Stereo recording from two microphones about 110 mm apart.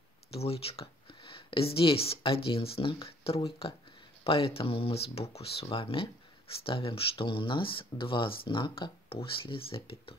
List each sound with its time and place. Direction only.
0.3 s speech: 65° left (ahead or behind)